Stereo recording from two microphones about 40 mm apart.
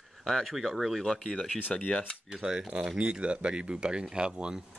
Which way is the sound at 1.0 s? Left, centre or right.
Centre.